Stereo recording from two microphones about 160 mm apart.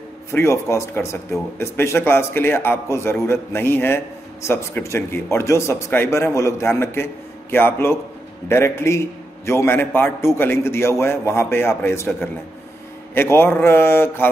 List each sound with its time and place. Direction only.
0.3 s speech: 15° left (ahead or behind)